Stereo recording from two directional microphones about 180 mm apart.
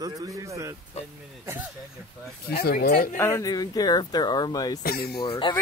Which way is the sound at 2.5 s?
60° left (ahead or behind).